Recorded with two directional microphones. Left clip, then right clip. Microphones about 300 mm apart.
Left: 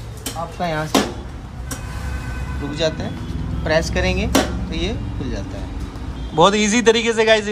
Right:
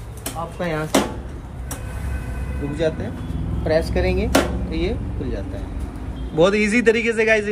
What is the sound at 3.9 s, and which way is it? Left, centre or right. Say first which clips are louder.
Speech: left 1 dB; left.